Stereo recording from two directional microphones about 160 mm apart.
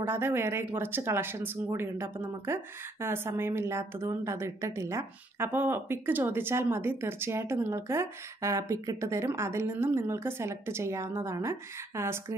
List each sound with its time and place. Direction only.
0.0 s a woman's voice: 15° right (ahead or behind)